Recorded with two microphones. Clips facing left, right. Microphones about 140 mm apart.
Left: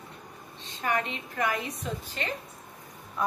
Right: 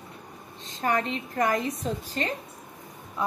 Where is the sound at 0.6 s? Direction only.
35° right (ahead or behind).